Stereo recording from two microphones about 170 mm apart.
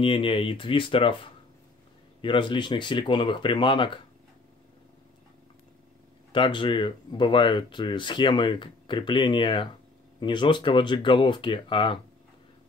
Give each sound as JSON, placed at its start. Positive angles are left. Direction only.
{"t": 0.0, "sound": "speech", "side_deg": 30}
{"t": 6.3, "sound": "speech", "side_deg": 30}